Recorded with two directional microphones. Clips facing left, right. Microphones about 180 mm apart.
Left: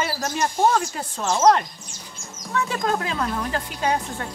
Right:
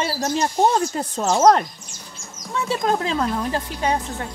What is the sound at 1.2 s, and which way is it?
Speech, 40° right (ahead or behind).